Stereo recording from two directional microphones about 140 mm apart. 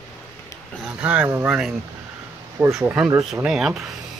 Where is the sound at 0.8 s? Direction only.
10° right (ahead or behind).